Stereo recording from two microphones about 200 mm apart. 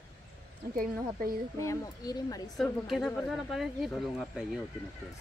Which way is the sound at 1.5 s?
15° left (ahead or behind).